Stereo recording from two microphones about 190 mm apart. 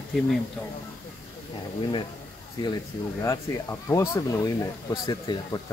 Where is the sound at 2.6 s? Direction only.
20° left (ahead or behind).